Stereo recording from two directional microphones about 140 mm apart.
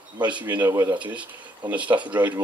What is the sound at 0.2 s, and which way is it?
Speech, 10° right (ahead or behind).